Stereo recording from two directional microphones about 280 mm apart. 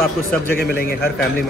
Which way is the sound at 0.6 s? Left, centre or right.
Left.